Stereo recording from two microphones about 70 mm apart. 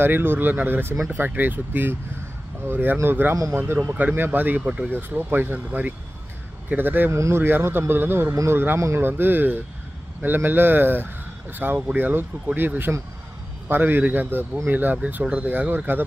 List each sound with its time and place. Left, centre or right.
0.0 s speech: right
7.1 s speech: right
8.7 s a man's voice: right
9.0 s speech: right